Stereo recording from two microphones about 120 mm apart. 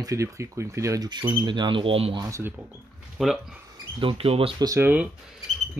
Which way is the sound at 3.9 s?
50° right (ahead or behind).